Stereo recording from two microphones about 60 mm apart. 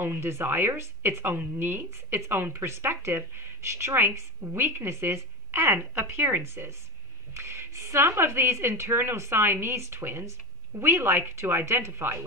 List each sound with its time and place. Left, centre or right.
0.0 s a woman's voice: right